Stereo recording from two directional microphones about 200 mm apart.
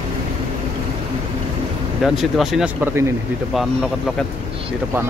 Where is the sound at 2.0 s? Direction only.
Centre (ahead or behind).